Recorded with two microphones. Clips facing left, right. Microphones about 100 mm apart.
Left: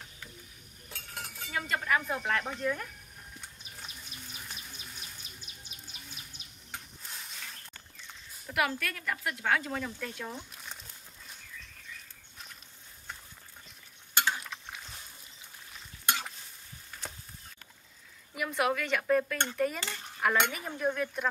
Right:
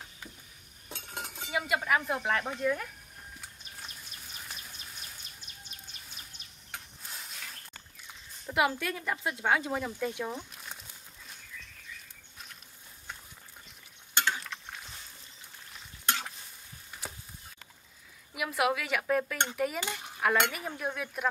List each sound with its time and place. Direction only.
0.8 s chink: 20° right (ahead or behind)
1.6 s speech: 10° right (ahead or behind)
3.3 s bird: 5° left (ahead or behind)
8.5 s speech: 20° right (ahead or behind)
10.5 s a sound: centre (ahead or behind)
14.1 s mechanisms: 5° left (ahead or behind)
16.1 s stir: 5° left (ahead or behind)
18.3 s speech: 5° right (ahead or behind)
19.3 s dishes: 15° right (ahead or behind)
19.6 s cutlery: 10° right (ahead or behind)
20.2 s speech: centre (ahead or behind)